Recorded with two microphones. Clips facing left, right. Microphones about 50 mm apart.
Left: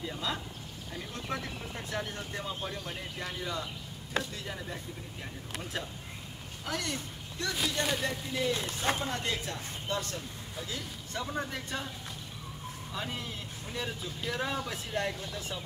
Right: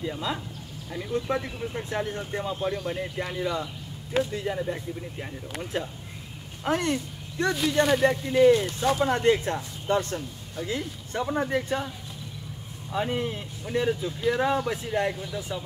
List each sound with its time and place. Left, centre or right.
0.0 s speech: centre; by 8.7 s right
8.7 s speech: left
9.1 s speech: right
12.9 s speech: right
15.3 s speech: centre